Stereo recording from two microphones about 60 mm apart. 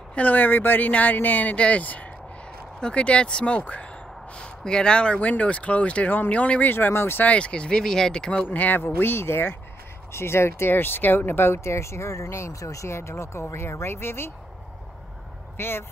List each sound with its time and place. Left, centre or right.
0.1 s speech: left
6.7 s speech: left
7.2 s speech: centre
8.5 s speech: left
15.5 s speech: left